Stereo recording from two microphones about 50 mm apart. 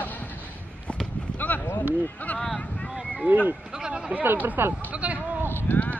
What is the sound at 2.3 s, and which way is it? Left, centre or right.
Speech, centre.